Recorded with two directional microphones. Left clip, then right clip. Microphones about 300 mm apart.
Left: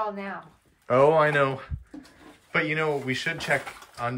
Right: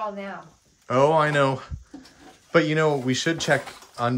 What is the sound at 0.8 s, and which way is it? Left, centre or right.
Speech, centre.